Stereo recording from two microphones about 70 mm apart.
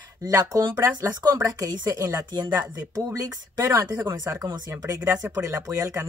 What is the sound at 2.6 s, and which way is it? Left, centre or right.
A woman's voice, right.